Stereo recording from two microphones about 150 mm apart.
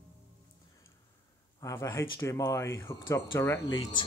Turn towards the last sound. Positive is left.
turn(degrees=30)  # may be behind; listen again after turning